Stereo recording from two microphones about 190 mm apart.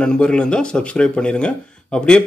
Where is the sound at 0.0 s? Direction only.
5° left (ahead or behind).